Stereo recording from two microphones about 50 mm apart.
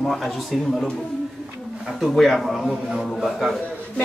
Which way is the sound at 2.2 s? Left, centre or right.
Centre.